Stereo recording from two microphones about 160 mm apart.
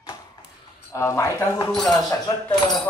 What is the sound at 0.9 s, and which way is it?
Speech, 20° left (ahead or behind).